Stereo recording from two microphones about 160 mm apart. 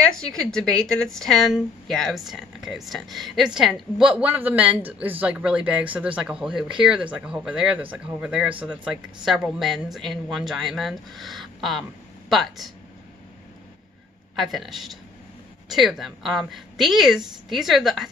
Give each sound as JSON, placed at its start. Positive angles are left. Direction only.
{"t": 0.1, "sound": "a woman's voice", "side_deg": 5}
{"t": 14.3, "sound": "a woman's voice", "side_deg": 0}